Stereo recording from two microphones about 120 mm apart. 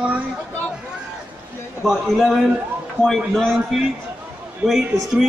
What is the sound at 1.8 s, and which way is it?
A man's voice, centre (ahead or behind).